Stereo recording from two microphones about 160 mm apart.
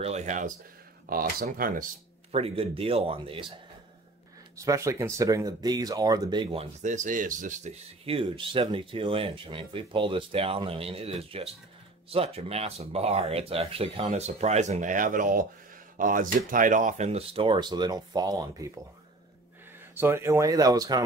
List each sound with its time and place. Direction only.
0.0 s speech: 45° right (ahead or behind)
1.0 s speech: 65° right (ahead or behind)
2.3 s speech: 35° right (ahead or behind)
4.6 s speech: 20° right (ahead or behind)
6.8 s speech: 50° right (ahead or behind); by 18.7 s 25° right (ahead or behind)
19.9 s speech: 15° right (ahead or behind)